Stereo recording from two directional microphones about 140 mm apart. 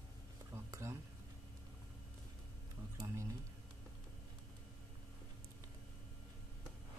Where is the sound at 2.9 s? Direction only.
20° right (ahead or behind).